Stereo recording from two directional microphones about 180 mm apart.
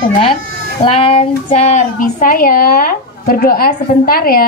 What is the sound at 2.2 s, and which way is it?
Speech, 55° left (ahead or behind).